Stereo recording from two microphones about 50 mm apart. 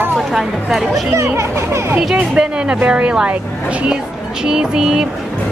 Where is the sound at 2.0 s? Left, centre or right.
Centre.